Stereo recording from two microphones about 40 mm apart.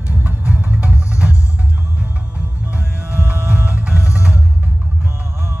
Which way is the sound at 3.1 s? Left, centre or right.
Right.